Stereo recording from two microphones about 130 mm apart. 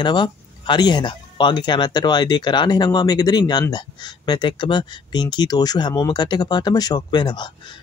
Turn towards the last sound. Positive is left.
turn(degrees=35)  # may be behind; listen again after turning